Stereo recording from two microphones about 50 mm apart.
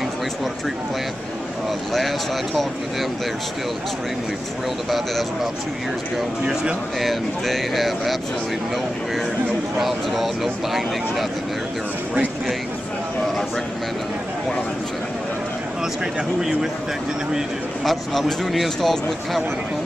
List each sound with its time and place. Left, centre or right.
2.0 s speech: centre
4.8 s speech: centre
6.4 s speech: centre
7.0 s speech: centre
9.8 s speech: centre
17.8 s speech: centre